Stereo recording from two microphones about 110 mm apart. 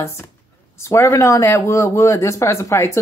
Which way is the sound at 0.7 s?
25° left (ahead or behind).